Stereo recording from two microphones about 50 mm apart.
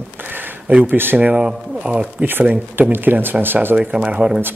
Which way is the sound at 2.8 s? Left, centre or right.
Right.